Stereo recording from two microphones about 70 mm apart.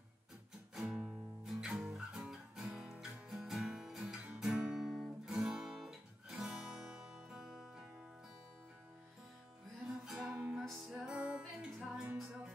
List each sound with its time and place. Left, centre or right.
0.7 s music: centre
4.0 s guitar: centre
6.3 s music: centre
9.8 s music: centre
11.1 s music: centre